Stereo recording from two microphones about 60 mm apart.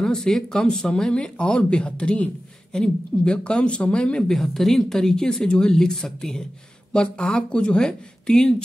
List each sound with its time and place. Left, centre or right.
0.0 s speech: centre
4.3 s speech: centre